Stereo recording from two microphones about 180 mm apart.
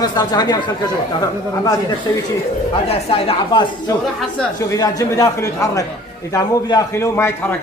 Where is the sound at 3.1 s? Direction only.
30° left (ahead or behind).